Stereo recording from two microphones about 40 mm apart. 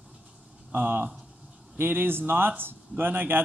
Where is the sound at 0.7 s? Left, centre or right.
Right.